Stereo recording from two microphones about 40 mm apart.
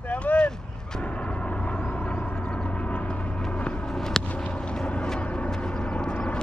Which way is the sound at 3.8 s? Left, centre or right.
Centre.